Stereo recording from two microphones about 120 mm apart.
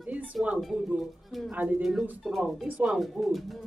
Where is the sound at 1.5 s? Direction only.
10° right (ahead or behind).